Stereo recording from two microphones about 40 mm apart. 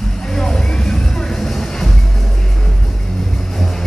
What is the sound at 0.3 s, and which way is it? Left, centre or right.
Music, centre.